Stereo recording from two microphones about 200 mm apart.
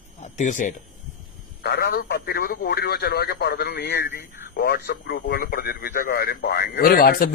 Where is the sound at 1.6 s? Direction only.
50° left (ahead or behind).